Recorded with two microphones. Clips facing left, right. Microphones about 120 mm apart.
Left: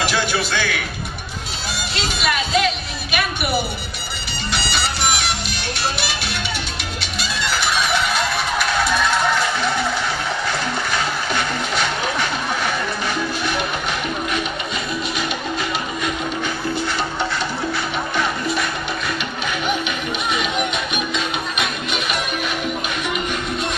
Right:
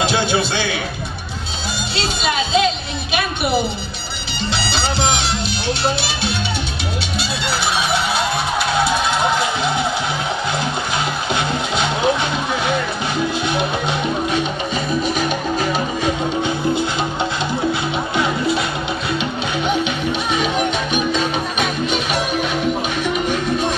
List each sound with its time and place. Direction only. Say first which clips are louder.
0.0 s a man's voice: right 3 dB; 25° right (ahead or behind)
2.1 s speech: right 2 dB; 30° right (ahead or behind)
4.5 s music: right 2 dB; 25° right (ahead or behind)
8.7 s music: right 1 dB; 20° right (ahead or behind)
11.3 s music: right 2 dB; 20° right (ahead or behind)
15.1 s music: right 4 dB; 45° right (ahead or behind)
18.1 s music: right 4 dB; 25° right (ahead or behind)
20.2 s music: right 2 dB; 35° right (ahead or behind)